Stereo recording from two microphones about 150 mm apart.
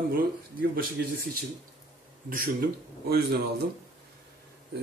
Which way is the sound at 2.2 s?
65° right (ahead or behind).